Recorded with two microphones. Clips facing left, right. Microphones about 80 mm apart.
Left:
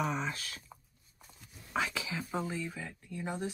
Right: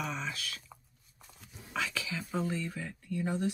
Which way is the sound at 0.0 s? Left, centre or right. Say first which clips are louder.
Left 3 dB; left.